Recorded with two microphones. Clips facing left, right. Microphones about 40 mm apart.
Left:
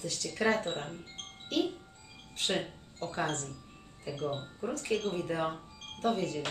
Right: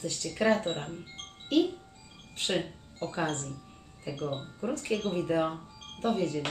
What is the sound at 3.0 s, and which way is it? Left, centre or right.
Speech, centre.